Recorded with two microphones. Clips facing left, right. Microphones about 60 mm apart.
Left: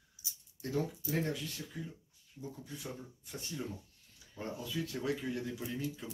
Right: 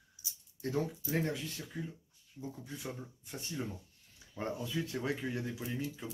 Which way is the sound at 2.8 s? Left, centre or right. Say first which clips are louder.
Right 2 dB; right.